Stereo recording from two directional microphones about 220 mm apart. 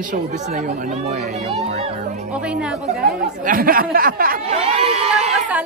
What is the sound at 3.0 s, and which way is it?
Speech, 45° right (ahead or behind).